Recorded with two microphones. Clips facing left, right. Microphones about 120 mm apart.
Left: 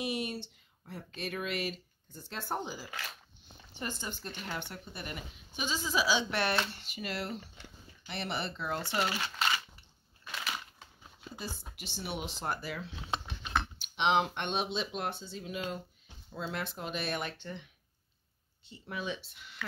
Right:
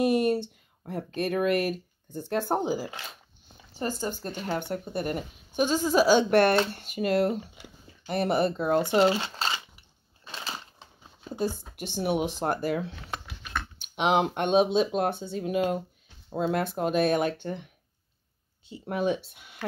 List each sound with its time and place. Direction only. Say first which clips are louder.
0.0 s a woman's voice: right 12 dB; 50° right (ahead or behind)
7.6 s speech: right 4 dB; 10° right (ahead or behind)
8.1 s a woman's voice: right 12 dB; 45° right (ahead or behind)
8.8 s speech: right 11 dB; 25° right (ahead or behind)
10.2 s a sound: right 1 dB; 30° right (ahead or behind)
11.3 s a woman's voice: right 14 dB; 50° right (ahead or behind)
13.0 s a sound: left 1 dB; 20° left (ahead or behind)
13.9 s a woman's voice: right 5 dB; 50° right (ahead or behind)
18.9 s a woman's voice: right 11 dB; 50° right (ahead or behind)